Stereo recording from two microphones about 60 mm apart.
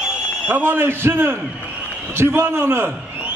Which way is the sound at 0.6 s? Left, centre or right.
Right.